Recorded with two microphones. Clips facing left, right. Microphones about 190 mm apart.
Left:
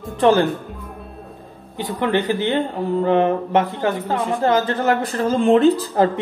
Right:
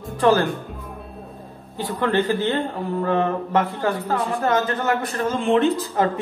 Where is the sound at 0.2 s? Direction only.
20° left (ahead or behind).